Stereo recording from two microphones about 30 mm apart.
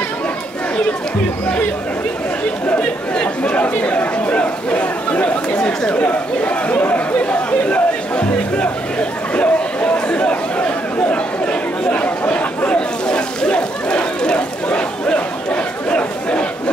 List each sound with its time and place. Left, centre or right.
3.5 s chatter: left
6.7 s speech: left
7.2 s chatter: left
13.1 s a sound: left